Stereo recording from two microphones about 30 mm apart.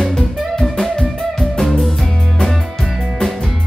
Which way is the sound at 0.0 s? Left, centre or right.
Centre.